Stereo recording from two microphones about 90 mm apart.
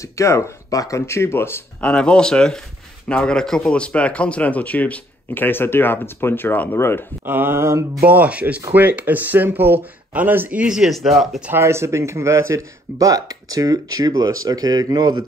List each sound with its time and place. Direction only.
0.0 s speech: 35° left (ahead or behind)
1.8 s speech: 10° left (ahead or behind); by 7.1 s 25° left (ahead or behind)
7.2 s speech: 25° right (ahead or behind)
8.1 s speech: 15° right (ahead or behind)
11.5 s speech: 30° right (ahead or behind); by 15.2 s 50° right (ahead or behind)